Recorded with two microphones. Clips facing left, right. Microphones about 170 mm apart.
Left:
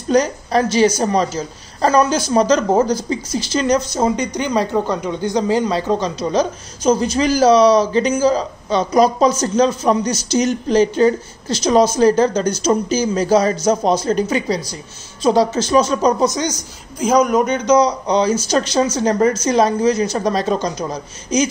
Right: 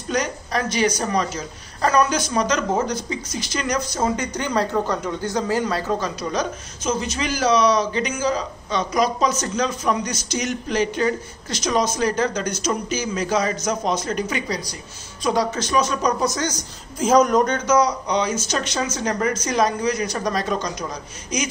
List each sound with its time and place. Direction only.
0.1 s a woman's voice: 30° left (ahead or behind)
17.0 s a woman's voice: centre (ahead or behind); by 21.5 s 30° left (ahead or behind)